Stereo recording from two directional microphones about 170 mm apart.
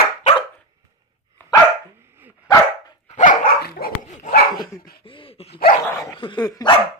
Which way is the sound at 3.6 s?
60° left (ahead or behind).